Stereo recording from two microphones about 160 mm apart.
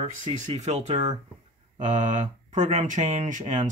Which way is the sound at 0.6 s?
40° right (ahead or behind).